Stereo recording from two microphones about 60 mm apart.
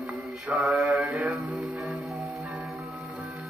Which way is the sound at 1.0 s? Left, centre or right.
Right.